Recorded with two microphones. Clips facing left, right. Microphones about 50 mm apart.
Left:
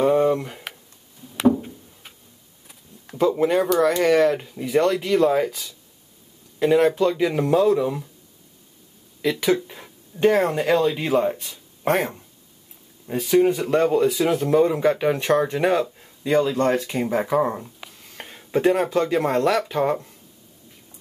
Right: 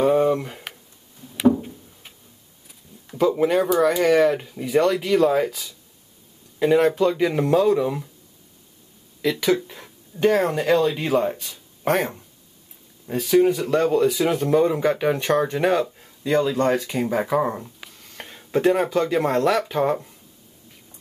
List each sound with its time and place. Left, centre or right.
0.0 s a sound: centre
3.3 s speech: centre
9.2 s speech: centre
9.7 s a sound: centre
10.2 s speech: centre
13.5 s speech: left
13.9 s speech: centre